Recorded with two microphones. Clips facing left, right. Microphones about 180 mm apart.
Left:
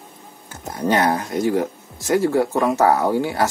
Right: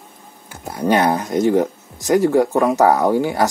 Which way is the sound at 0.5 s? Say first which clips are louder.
Right 3 dB; 10° right (ahead or behind).